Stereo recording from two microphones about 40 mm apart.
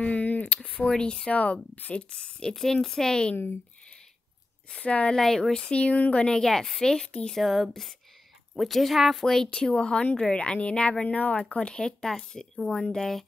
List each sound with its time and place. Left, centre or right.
0.0 s a sound: left
0.7 s speech: left
1.3 s speech: left
2.1 s speech: centre
4.8 s speech: left
5.1 s speech: centre
5.7 s speech: left
6.2 s speech: centre
7.2 s speech: centre
9.5 s speech: left
12.0 s speech: centre